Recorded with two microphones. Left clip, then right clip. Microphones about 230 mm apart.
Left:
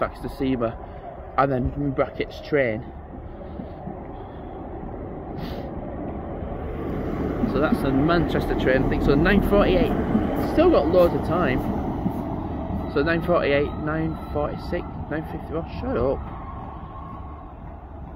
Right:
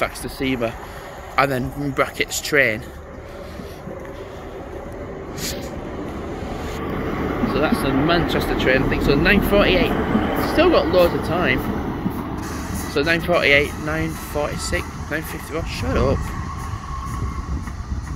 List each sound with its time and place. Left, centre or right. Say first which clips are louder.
0.0 s speech: right 3 dB; centre
5.4 s vehicle: right 7 dB; centre
6.8 s vehicle: right 3 dB; left
7.8 s speech: right 3 dB; centre
9.9 s vehicle: right 4 dB; left
10.5 s speech: right 2 dB; centre
12.9 s speech: right 3 dB; centre